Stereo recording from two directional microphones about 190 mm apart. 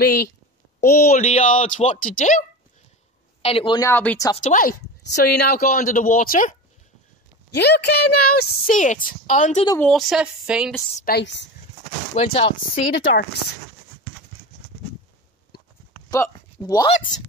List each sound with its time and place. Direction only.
0.0 s a woman's voice: 55° left (ahead or behind)
3.4 s speech: 30° left (ahead or behind)
3.9 s speech: 10° left (ahead or behind)
4.4 s a woman's voice: 45° left (ahead or behind)
7.5 s a woman's voice: 60° left (ahead or behind); by 9.7 s 40° left (ahead or behind)
9.8 s speech: centre (ahead or behind)
11.0 s a woman's voice: 55° left (ahead or behind)
12.2 s speech: 30° left (ahead or behind)
12.9 s speech: 70° left (ahead or behind)
16.1 s speech: 20° left (ahead or behind)